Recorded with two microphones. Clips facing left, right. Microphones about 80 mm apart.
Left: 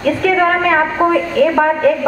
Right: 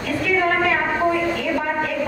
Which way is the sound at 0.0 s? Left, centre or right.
Left.